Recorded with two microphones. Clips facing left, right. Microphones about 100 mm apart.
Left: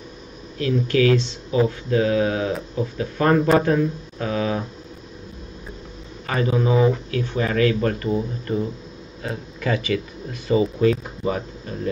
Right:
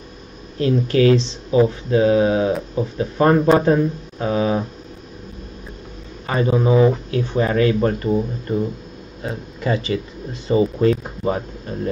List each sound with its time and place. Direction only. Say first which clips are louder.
0.6 s speech: right 3 dB; 30° right (ahead or behind)
6.2 s a man's voice: right 3 dB; 25° right (ahead or behind)
9.2 s speech: right 2 dB; 25° right (ahead or behind)